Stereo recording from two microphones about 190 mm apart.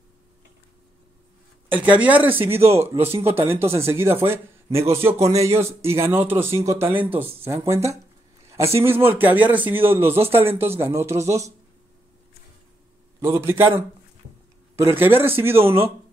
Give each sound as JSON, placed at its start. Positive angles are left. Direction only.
{"t": 1.7, "sound": "a man's voice", "side_deg": -10}
{"t": 2.3, "sound": "speech", "side_deg": -30}
{"t": 2.7, "sound": "a man's voice", "side_deg": -15}
{"t": 8.5, "sound": "a sound", "side_deg": -15}
{"t": 8.8, "sound": "a man's voice", "side_deg": -10}
{"t": 13.4, "sound": "a man's voice", "side_deg": -15}